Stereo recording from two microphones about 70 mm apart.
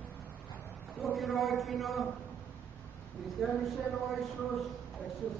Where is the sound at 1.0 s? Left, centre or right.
Centre.